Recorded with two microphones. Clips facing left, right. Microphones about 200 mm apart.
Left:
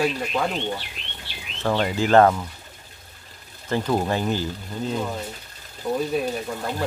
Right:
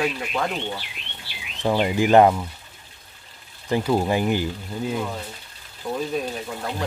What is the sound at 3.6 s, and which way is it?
Speech, 10° right (ahead or behind).